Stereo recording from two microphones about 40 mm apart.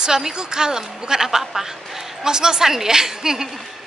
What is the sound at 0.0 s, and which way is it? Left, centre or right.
A woman's voice, centre.